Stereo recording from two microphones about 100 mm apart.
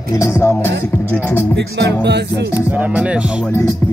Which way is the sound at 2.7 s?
15° right (ahead or behind).